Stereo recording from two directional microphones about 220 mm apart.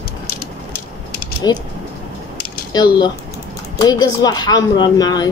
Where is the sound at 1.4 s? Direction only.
20° left (ahead or behind).